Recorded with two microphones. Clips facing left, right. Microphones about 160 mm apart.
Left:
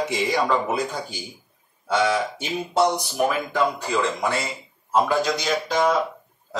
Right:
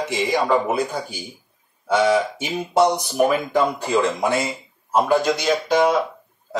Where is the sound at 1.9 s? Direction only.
15° right (ahead or behind).